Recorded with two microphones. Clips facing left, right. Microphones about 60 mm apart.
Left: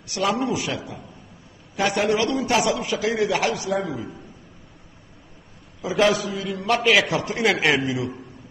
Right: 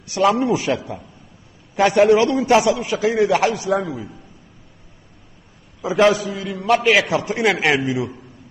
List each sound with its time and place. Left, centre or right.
0.0 s a man's voice: right
5.8 s a man's voice: right